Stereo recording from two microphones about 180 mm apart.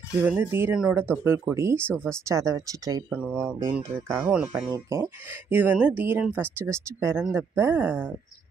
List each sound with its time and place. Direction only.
0.2 s speech: 10° right (ahead or behind)